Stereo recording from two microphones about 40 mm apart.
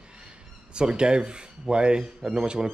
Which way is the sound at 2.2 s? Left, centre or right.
Centre.